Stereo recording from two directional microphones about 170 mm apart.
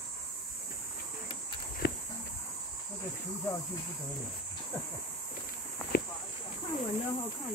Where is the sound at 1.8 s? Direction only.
60° left (ahead or behind).